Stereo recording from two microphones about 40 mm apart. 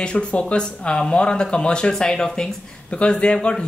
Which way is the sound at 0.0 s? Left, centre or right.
Left.